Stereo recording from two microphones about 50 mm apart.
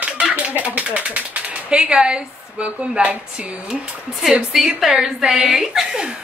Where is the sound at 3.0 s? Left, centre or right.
Right.